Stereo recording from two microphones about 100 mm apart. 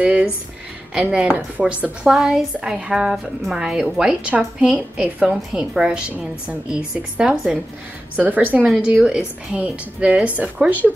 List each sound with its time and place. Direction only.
0.0 s a sound: 10° right (ahead or behind)
1.1 s a woman's voice: 10° right (ahead or behind)
8.2 s a woman's voice: 15° right (ahead or behind)